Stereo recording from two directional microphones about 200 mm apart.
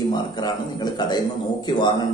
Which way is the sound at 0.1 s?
20° left (ahead or behind).